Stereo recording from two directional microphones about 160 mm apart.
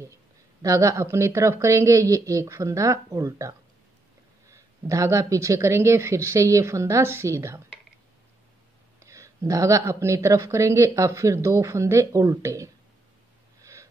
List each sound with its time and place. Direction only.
0.0 s speech: 20° right (ahead or behind)
9.0 s speech: 20° right (ahead or behind)
13.6 s gasp: 20° right (ahead or behind)